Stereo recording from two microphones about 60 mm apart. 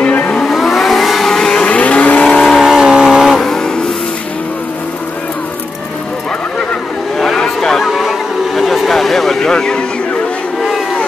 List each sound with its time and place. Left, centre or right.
0.0 s vehicle: left
0.4 s vehicle: centre
1.6 s vehicle: centre
2.4 s vehicle: centre
3.3 s vehicle: centre
7.2 s a sound: centre